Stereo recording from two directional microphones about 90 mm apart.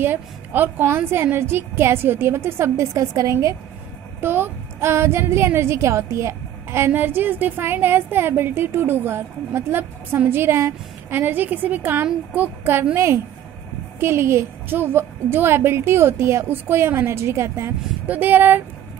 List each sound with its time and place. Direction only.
0.0 s a woman's voice: 20° right (ahead or behind)
18.0 s a woman's voice: 20° right (ahead or behind)